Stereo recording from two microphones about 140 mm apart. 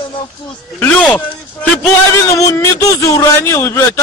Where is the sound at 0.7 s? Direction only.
10° left (ahead or behind).